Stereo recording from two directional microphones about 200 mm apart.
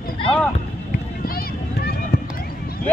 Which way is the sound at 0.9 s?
45° left (ahead or behind).